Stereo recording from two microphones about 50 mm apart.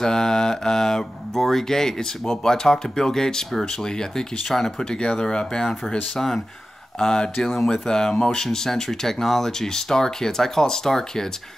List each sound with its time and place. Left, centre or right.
0.0 s speech: centre
4.9 s speech: centre